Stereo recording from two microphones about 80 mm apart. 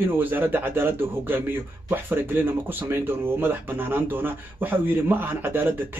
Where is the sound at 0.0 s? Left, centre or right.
Right.